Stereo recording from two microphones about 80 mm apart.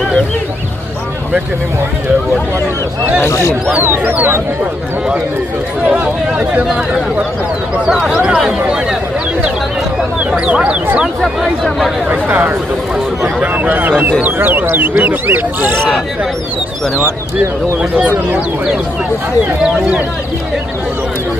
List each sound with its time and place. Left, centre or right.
3.3 s speech: left
3.8 s speech: right
5.9 s speech: centre
7.8 s speech: centre
10.4 s speech: centre
11.1 s speech: centre
12.1 s speech: right